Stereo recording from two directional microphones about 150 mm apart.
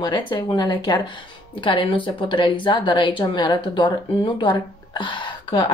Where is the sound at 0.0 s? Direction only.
30° left (ahead or behind).